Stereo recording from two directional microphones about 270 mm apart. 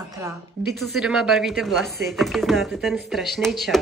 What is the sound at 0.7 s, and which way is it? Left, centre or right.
Speech, centre.